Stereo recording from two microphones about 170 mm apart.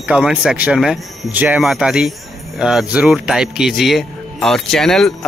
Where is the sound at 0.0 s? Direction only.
5° right (ahead or behind).